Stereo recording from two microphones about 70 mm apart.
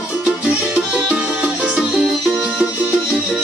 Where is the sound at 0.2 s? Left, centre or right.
Centre.